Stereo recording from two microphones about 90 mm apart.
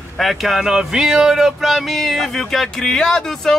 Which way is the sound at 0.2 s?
Centre (ahead or behind).